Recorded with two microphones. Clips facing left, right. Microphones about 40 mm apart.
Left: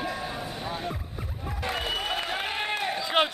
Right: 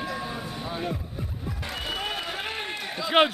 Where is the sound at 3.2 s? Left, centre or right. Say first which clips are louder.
Right 4 dB; centre.